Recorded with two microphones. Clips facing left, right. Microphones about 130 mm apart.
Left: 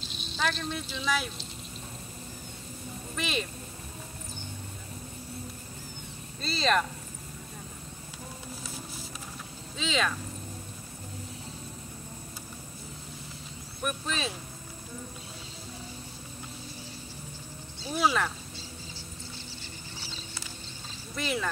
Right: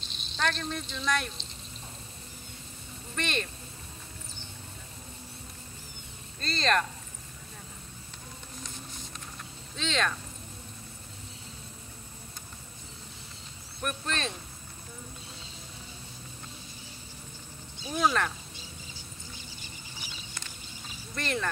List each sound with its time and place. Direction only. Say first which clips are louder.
0.0 s speech: even; centre (ahead or behind)
3.2 s speech: even; 5° left (ahead or behind)
6.4 s speech: left 1 dB; 5° left (ahead or behind)
8.6 s a sound: left 3 dB; 5° left (ahead or behind)
9.8 s speech: left 1 dB; 5° left (ahead or behind)
13.8 s speech: left 1 dB; 5° left (ahead or behind)
17.7 s a sound: even; 15° right (ahead or behind)
18.0 s speech: even; 5° left (ahead or behind)
19.6 s a sound: left 2 dB; 15° right (ahead or behind)
21.1 s speech: left 1 dB; 5° left (ahead or behind)